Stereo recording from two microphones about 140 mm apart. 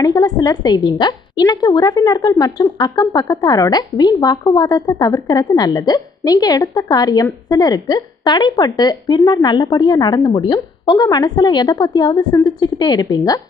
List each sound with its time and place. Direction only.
0.0 s a woman's voice: 30° left (ahead or behind)